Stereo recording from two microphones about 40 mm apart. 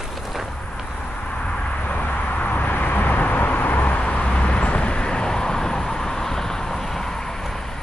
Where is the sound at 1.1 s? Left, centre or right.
Left.